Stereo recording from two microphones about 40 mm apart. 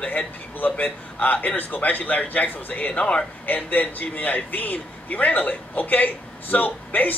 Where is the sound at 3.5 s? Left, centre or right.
Left.